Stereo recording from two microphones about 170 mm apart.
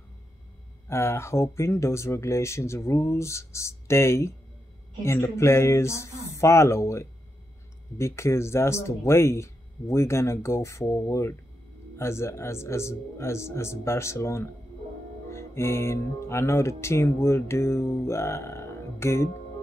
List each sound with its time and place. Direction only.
0.8 s speech: 15° left (ahead or behind)